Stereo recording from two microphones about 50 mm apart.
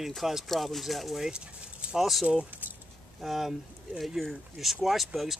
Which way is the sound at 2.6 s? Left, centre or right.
Right.